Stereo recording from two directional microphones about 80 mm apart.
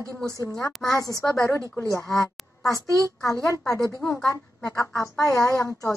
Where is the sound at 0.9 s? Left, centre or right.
Left.